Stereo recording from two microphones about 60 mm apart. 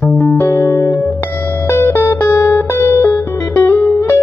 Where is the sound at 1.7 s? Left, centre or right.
Left.